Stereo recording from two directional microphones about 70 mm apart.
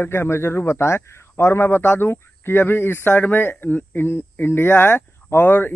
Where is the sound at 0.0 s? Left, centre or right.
Left.